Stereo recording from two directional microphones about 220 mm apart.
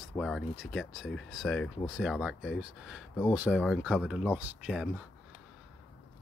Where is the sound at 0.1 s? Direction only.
Centre (ahead or behind).